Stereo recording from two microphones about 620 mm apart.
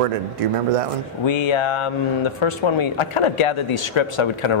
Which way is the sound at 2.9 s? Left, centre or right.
Left.